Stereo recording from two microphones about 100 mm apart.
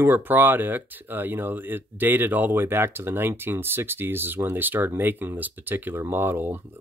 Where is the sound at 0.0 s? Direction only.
20° right (ahead or behind).